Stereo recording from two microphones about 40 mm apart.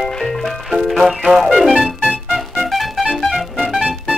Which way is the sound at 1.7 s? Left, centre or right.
Right.